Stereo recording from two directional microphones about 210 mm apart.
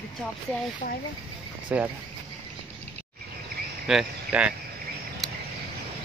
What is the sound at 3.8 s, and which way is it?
Speech, 5° right (ahead or behind).